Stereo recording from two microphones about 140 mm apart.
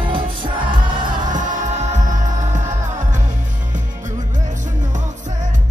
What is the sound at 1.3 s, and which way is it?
Music, 65° right (ahead or behind).